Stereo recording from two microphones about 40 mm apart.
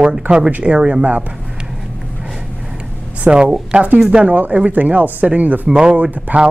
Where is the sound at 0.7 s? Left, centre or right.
Right.